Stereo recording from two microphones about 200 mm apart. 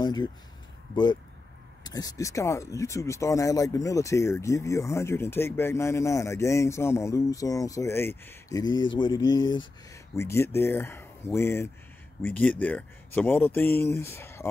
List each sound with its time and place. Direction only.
0.0 s speech: 20° left (ahead or behind)